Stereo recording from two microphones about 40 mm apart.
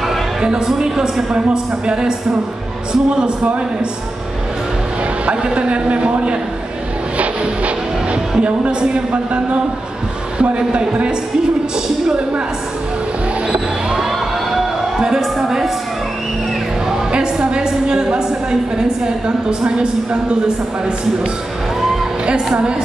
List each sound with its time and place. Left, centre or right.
0.4 s a woman's voice: centre
5.2 s a woman's voice: right
13.5 s a sound: right
14.5 s music: centre
16.9 s music: right
18.8 s a woman's voice: centre